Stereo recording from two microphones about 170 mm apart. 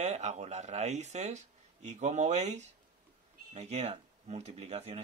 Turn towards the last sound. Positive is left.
turn(degrees=-40)  # may be behind; listen again after turning